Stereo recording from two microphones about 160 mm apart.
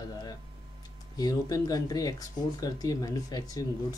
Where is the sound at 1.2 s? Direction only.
25° left (ahead or behind).